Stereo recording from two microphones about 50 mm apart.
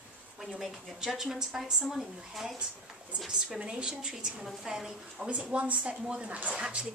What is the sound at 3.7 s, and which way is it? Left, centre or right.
A woman's voice, centre.